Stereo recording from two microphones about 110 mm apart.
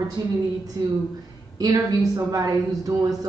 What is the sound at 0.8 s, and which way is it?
A woman's voice, 30° right (ahead or behind).